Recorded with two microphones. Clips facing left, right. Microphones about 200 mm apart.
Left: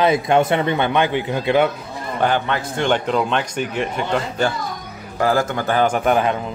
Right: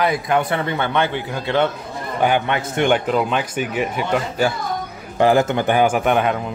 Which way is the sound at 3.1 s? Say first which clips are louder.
Even; 5° right (ahead or behind).